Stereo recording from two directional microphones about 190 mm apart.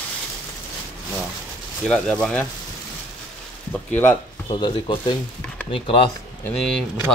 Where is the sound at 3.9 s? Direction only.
10° left (ahead or behind).